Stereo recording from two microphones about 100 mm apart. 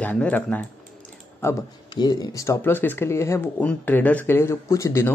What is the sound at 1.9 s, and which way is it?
Speech, 45° left (ahead or behind).